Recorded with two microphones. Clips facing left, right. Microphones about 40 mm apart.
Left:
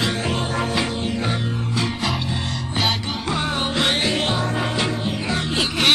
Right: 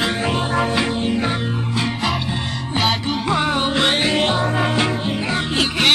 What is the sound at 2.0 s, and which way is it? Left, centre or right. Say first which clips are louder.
Music: right 2 dB; centre.